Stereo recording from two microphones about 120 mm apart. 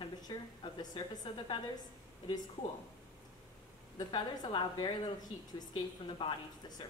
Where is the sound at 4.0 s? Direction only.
35° left (ahead or behind).